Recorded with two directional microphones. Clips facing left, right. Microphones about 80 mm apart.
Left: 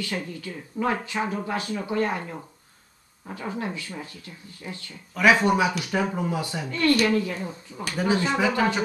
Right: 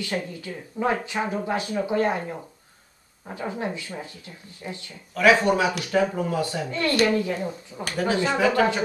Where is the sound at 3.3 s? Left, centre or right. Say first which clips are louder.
Right 2 dB; right.